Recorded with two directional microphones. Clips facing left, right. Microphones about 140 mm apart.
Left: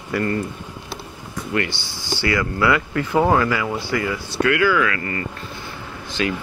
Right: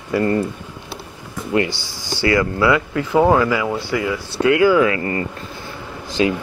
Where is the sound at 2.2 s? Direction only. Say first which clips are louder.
Right 4 dB; 25° right (ahead or behind); by 4.2 s 5° right (ahead or behind).